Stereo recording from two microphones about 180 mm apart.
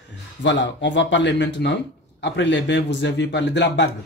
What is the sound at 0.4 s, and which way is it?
A man's voice, 75° left (ahead or behind).